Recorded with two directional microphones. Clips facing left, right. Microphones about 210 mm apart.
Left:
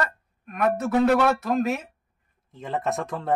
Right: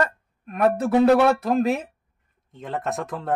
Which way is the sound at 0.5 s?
30° right (ahead or behind).